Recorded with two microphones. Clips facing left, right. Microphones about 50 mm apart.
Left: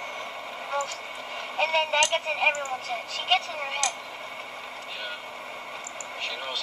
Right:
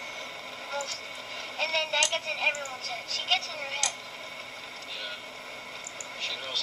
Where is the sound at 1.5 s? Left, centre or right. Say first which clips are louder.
Left 5 dB; left.